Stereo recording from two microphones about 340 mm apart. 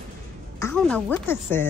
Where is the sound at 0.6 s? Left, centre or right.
Centre.